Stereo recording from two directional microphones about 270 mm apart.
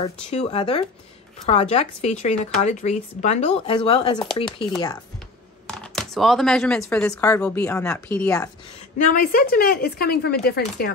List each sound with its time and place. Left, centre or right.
0.0 s speech: left
5.7 s speech: centre
8.9 s speech: left